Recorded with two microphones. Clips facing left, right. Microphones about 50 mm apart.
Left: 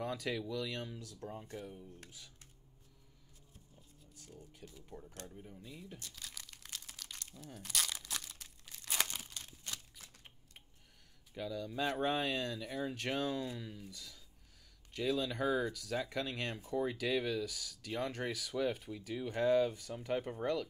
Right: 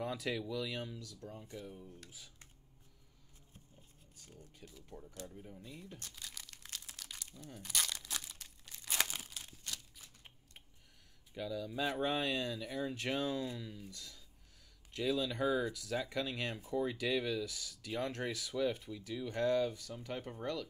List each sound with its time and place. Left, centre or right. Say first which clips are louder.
0.0 s speech: even; centre
0.9 s speech: left 3 dB; left
1.4 s speech: left 1 dB; centre
2.0 s speech: even; centre
4.7 s speech: right 1 dB; centre
6.2 s crumpling: even; centre
11.3 s speech: even; centre
18.9 s speech: left 1 dB; centre